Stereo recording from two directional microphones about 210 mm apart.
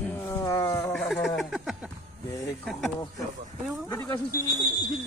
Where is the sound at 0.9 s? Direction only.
Centre (ahead or behind).